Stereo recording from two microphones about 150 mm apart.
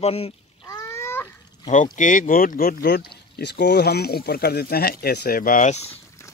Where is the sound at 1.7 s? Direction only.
55° left (ahead or behind).